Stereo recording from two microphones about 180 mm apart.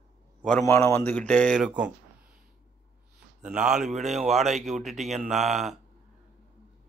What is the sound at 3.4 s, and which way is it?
Speech, 5° right (ahead or behind).